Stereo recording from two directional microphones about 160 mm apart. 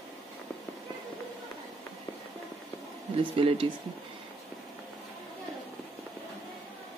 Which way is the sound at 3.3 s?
35° right (ahead or behind).